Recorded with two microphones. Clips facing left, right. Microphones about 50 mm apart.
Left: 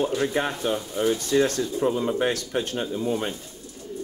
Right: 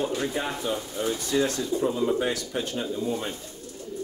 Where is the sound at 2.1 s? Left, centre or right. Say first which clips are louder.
Left 3 dB; left.